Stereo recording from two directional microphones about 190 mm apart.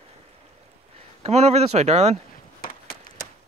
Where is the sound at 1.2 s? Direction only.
35° right (ahead or behind).